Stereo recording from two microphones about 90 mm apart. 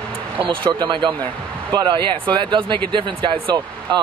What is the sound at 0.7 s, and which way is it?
Speech, 55° right (ahead or behind).